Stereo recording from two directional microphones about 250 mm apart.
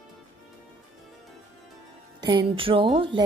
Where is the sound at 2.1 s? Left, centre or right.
Centre.